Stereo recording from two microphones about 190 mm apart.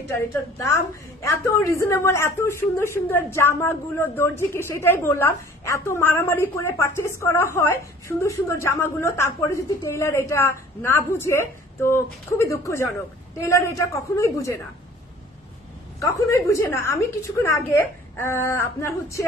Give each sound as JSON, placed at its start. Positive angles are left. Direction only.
{"t": 0.1, "sound": "a woman's voice", "side_deg": 15}
{"t": 16.0, "sound": "a woman's voice", "side_deg": 15}